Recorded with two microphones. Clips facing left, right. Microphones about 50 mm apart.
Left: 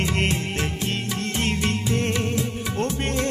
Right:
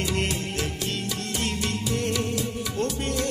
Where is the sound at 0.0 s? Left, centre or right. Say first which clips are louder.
Left 3 dB; left.